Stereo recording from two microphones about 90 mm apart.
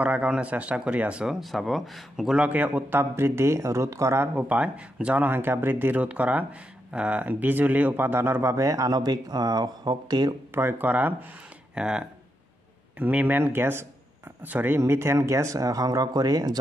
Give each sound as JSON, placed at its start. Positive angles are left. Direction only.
{"t": 0.0, "sound": "speech", "side_deg": -15}
{"t": 10.5, "sound": "speech", "side_deg": -25}
{"t": 11.7, "sound": "speech", "side_deg": -10}
{"t": 13.0, "sound": "speech", "side_deg": -20}